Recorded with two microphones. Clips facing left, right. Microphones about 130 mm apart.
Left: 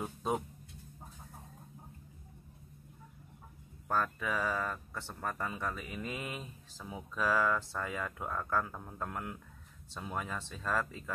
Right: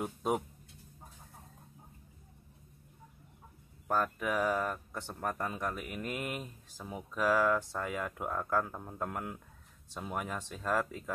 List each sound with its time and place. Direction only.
0.0 s speech: 10° right (ahead or behind)
3.8 s speech: 10° right (ahead or behind)